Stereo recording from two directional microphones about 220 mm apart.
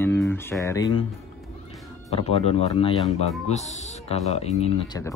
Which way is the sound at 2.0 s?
25° left (ahead or behind).